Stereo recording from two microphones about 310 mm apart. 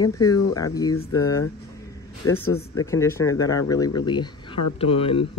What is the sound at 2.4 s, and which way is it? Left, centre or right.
Speech, left.